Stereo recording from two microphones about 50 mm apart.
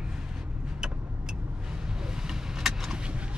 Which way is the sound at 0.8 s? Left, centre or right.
Centre.